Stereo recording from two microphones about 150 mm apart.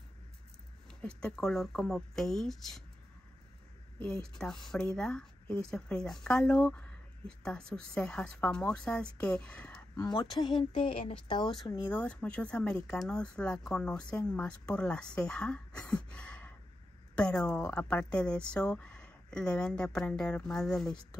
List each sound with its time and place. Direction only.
0.8 s a woman's voice: 5° left (ahead or behind)
4.0 s a woman's voice: 5° left (ahead or behind)
9.9 s a woman's voice: 30° left (ahead or behind)
11.9 s a woman's voice: 10° left (ahead or behind)